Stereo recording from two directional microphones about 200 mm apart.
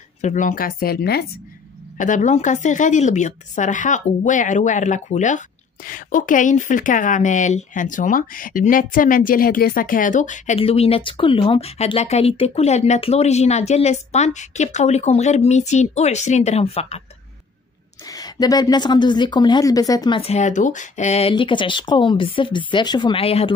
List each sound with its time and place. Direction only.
0.2 s speech: 40° left (ahead or behind)
2.0 s speech: 40° left (ahead or behind)
18.0 s speech: 20° left (ahead or behind)